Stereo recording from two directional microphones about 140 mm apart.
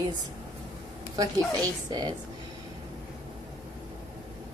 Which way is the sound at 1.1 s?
25° right (ahead or behind).